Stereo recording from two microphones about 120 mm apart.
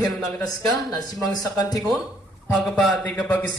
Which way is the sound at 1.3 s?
30° left (ahead or behind).